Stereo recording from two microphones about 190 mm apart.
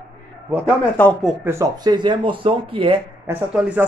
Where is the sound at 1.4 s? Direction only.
15° right (ahead or behind).